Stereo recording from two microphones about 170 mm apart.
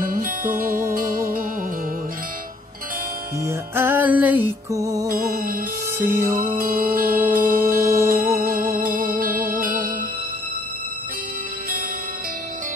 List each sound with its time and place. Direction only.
0.0 s music: 55° right (ahead or behind)
3.4 s music: 10° right (ahead or behind)
5.0 s music: 55° right (ahead or behind)
5.9 s music: 15° right (ahead or behind)
6.4 s music: 55° right (ahead or behind)
7.8 s music: 15° right (ahead or behind)
8.1 s music: 55° right (ahead or behind)